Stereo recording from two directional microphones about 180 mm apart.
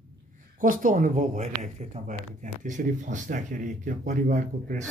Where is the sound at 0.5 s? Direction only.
50° right (ahead or behind).